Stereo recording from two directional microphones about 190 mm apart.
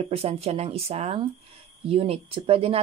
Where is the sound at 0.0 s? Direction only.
30° right (ahead or behind).